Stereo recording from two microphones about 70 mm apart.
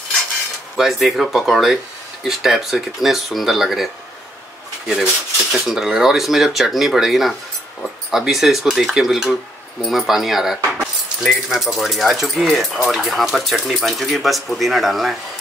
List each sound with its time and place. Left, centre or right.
0.7 s speech: centre